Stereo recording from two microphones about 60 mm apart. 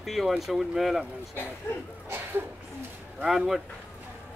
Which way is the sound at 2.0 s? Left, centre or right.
Right.